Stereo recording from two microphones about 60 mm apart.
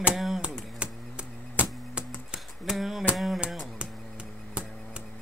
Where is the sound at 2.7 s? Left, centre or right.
Centre.